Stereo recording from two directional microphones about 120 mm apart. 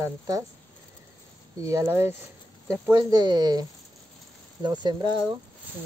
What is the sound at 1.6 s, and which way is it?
Speech, 25° right (ahead or behind).